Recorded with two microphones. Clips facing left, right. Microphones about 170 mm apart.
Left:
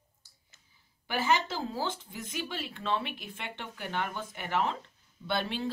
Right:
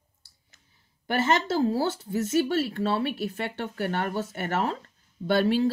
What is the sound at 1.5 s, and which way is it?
Speech, 40° right (ahead or behind).